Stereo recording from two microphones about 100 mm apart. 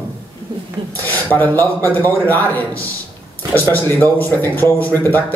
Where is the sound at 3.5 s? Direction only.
15° left (ahead or behind).